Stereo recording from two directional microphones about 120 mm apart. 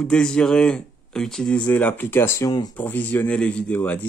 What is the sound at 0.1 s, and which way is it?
Speech, 5° left (ahead or behind).